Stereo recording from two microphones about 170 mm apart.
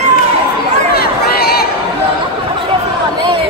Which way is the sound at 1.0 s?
65° left (ahead or behind).